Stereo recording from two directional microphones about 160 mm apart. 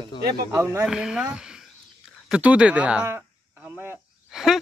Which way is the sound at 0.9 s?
5° right (ahead or behind).